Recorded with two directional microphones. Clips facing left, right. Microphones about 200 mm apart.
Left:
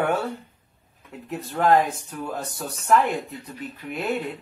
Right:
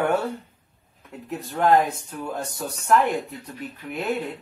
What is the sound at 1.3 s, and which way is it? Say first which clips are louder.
Speech: even; centre (ahead or behind).